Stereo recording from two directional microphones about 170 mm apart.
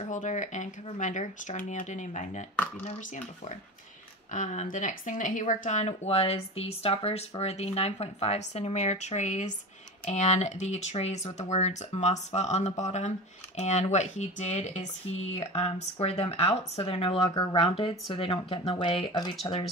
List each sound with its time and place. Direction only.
0.0 s speech: 45° left (ahead or behind); by 19.3 s 30° left (ahead or behind)